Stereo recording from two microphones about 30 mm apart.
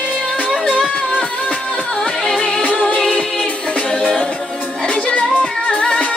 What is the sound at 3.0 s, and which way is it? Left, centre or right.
Music, left.